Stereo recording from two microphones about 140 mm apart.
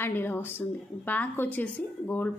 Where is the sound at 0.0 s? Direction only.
15° left (ahead or behind).